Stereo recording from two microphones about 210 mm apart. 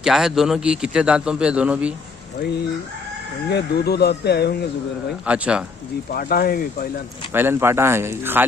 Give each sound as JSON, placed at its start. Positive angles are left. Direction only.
{"t": 0.0, "sound": "a man's voice", "side_deg": 0}
{"t": 3.4, "sound": "speech", "side_deg": 50}
{"t": 5.2, "sound": "a man's voice", "side_deg": -5}
{"t": 6.1, "sound": "speech", "side_deg": 45}
{"t": 7.3, "sound": "speech", "side_deg": -10}